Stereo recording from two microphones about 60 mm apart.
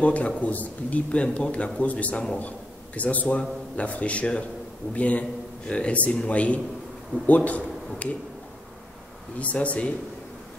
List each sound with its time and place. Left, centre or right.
0.0 s a man's voice: left
9.4 s a man's voice: left